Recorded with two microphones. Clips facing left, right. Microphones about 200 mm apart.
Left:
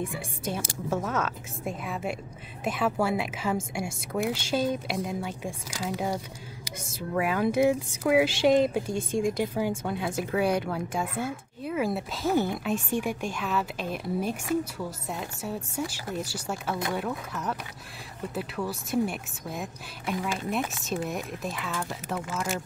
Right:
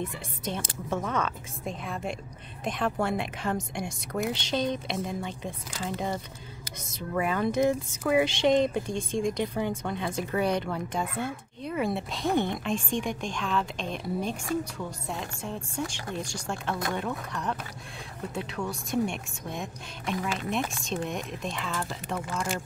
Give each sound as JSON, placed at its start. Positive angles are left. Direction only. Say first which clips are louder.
{"t": 0.0, "sound": "speech", "louder": "left 2 dB", "side_deg": 10}